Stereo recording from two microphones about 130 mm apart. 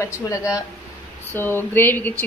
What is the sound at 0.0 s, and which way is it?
A woman's voice, 25° left (ahead or behind).